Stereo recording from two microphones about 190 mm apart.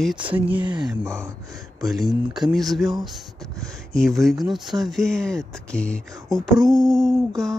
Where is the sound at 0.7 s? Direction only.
20° right (ahead or behind).